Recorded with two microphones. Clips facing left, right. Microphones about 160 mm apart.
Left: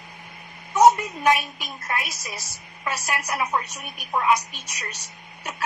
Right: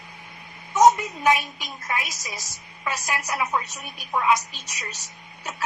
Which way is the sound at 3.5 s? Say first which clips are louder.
Left 1 dB; 10° left (ahead or behind).